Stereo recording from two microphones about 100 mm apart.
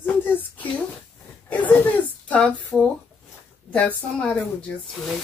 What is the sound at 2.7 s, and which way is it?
A woman's voice, 5° left (ahead or behind).